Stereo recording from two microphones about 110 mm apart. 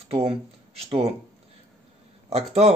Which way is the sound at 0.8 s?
65° right (ahead or behind).